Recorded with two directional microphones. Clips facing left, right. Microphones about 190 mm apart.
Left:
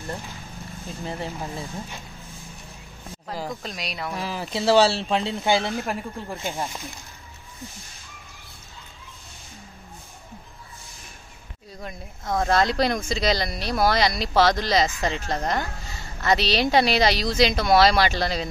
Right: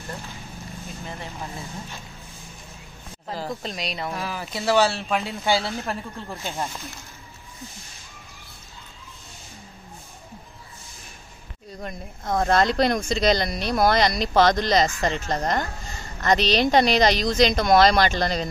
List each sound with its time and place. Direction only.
1.0 s speech: 35° left (ahead or behind)
1.4 s speech: 15° left (ahead or behind)
3.4 s speech: centre (ahead or behind)
4.3 s speech: 30° left (ahead or behind)
5.4 s speech: 15° left (ahead or behind)
11.8 s speech: centre (ahead or behind)